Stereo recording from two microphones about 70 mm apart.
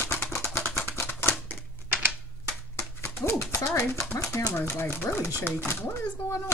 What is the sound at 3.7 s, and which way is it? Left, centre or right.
Speech, left.